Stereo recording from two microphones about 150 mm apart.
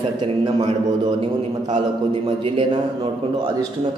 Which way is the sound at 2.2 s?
35° right (ahead or behind).